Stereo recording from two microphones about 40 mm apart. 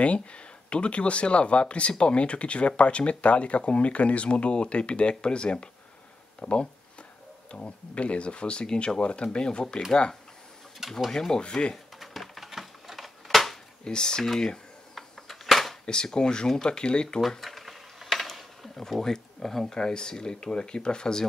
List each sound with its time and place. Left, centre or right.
0.0 s speech: left
11.1 s speech: centre
12.0 s typewriter: centre
13.8 s speech: centre
15.0 s a sound: centre
15.8 s speech: centre
17.3 s a sound: centre; by 20.4 s left
20.5 s speech: left